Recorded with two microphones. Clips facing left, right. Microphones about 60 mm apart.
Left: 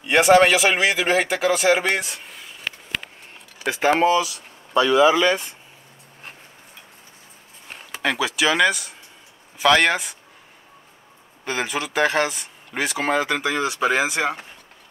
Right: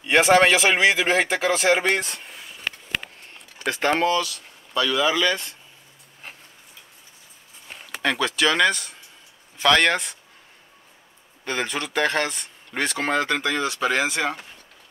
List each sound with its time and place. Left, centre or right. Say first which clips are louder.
0.0 s speech: left 2 dB; centre
3.6 s speech: left 3 dB; centre
8.0 s speech: even; centre
11.4 s speech: left 1 dB; centre